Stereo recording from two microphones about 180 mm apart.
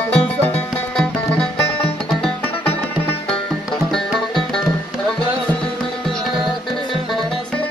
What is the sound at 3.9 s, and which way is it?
Music, centre (ahead or behind).